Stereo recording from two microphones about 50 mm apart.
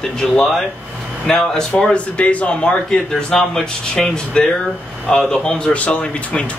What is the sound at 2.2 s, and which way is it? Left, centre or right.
Speech, left.